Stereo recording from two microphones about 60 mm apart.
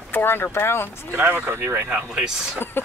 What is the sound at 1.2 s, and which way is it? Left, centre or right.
Speech, right.